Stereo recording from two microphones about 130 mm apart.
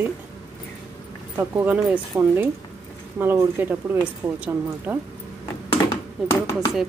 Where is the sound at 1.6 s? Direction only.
10° right (ahead or behind).